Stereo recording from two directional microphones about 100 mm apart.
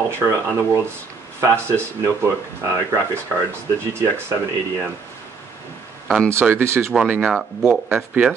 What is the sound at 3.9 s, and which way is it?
Speech, 25° right (ahead or behind).